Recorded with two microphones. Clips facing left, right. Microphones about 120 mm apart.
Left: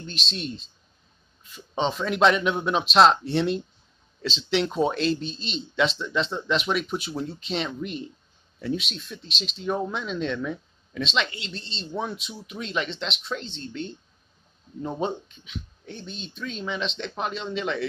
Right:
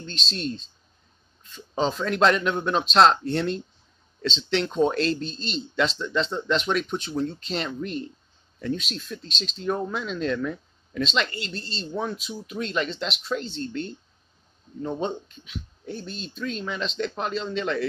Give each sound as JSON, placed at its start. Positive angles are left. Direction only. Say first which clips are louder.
{"t": 0.0, "sound": "speech", "louder": "right 2 dB", "side_deg": 5}
{"t": 14.8, "sound": "speech", "louder": "even", "side_deg": 10}
{"t": 15.4, "sound": "speech", "louder": "right 2 dB", "side_deg": -5}